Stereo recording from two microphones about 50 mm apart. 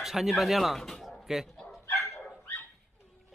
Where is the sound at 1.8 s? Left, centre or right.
Left.